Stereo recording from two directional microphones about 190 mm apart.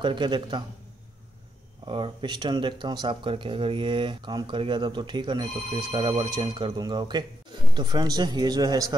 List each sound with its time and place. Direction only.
0.0 s speech: 25° right (ahead or behind)
1.9 s speech: 25° right (ahead or behind)